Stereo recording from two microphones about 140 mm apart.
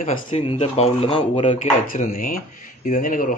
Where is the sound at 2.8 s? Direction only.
70° left (ahead or behind).